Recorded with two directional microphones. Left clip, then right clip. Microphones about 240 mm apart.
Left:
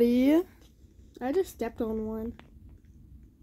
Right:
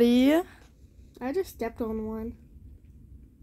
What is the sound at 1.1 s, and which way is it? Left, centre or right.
A woman's voice, left.